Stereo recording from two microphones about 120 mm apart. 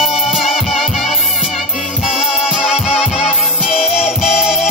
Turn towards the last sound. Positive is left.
turn(degrees=-5)  # may be behind; listen again after turning